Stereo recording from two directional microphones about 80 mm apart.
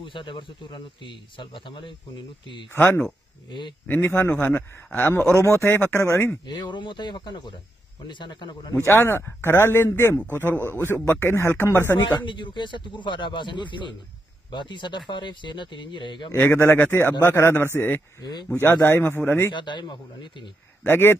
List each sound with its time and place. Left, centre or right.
0.0 s speech: left
3.8 s speech: left
5.3 s speech: left
6.4 s speech: left
8.8 s speech: left
12.3 s speech: left
16.3 s speech: left
18.2 s speech: left
18.5 s speech: left
19.5 s speech: left
20.8 s speech: left